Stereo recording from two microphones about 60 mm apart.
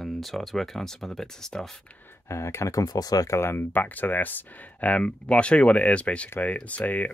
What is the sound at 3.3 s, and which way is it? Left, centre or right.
Speech, left.